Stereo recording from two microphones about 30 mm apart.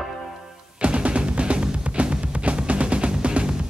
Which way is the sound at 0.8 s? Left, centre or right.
Right.